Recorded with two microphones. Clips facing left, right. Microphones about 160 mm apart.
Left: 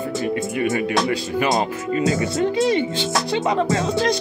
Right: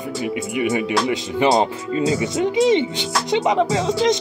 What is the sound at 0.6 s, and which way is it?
Speech, 15° right (ahead or behind).